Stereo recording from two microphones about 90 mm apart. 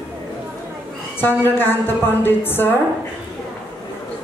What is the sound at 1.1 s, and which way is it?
A woman's voice, 25° left (ahead or behind).